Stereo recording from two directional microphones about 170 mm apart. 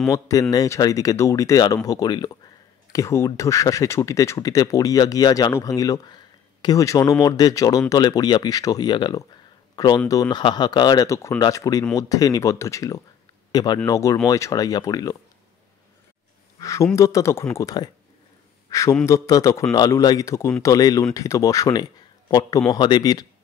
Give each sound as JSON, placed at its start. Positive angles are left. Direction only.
{"t": 0.1, "sound": "speech", "side_deg": 20}
{"t": 16.5, "sound": "a man's voice", "side_deg": 20}